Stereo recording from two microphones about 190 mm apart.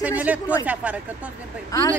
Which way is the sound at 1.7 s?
15° left (ahead or behind).